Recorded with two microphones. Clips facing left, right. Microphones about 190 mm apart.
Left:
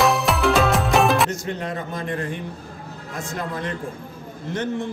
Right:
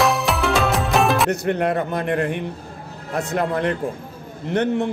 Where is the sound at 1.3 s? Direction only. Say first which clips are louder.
Right 7 dB; 60° right (ahead or behind).